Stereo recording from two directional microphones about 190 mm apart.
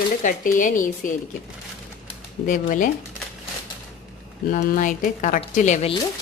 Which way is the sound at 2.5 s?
45° left (ahead or behind).